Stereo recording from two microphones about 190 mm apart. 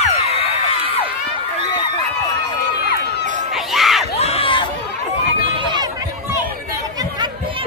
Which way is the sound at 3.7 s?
Centre (ahead or behind).